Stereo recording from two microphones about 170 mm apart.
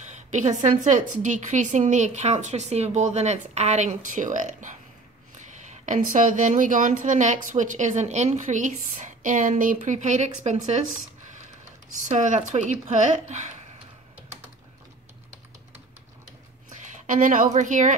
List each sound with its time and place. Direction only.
0.1 s a woman's voice: 45° right (ahead or behind)
11.9 s a woman's voice: 45° right (ahead or behind)
16.9 s a woman's voice: 45° right (ahead or behind)